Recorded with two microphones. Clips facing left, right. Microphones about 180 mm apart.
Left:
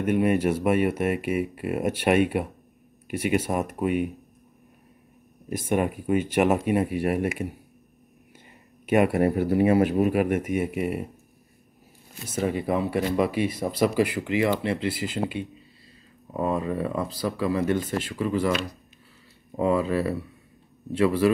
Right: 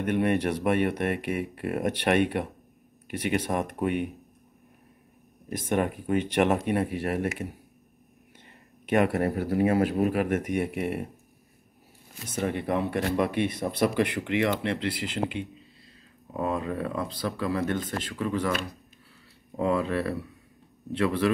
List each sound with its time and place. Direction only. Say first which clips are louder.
0.0 s speech: left 3 dB; 5° left (ahead or behind)
5.5 s speech: left 2 dB; 10° left (ahead or behind)
8.8 s speech: left 3 dB; 10° left (ahead or behind)
12.3 s speech: left 3 dB; 5° left (ahead or behind)
19.5 s speech: left 3 dB; 5° left (ahead or behind)